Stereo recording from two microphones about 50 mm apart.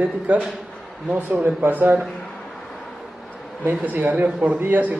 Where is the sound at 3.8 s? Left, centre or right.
Right.